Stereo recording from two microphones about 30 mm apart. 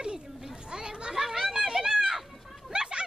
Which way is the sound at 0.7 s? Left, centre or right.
Right.